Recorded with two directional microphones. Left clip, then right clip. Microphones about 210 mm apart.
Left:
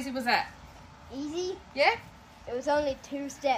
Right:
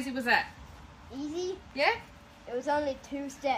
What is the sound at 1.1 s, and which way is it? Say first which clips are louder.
Speech: left 1 dB; 10° left (ahead or behind).